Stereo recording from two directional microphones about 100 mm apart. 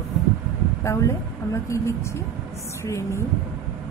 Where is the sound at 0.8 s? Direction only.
30° left (ahead or behind).